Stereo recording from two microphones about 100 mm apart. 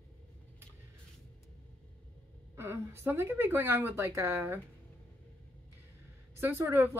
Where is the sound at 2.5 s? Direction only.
25° right (ahead or behind).